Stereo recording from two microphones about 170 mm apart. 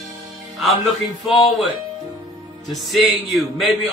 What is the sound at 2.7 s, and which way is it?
Speech, centre (ahead or behind).